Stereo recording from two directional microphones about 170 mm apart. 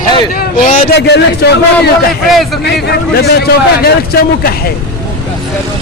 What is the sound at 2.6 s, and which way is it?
A man's voice, 70° left (ahead or behind).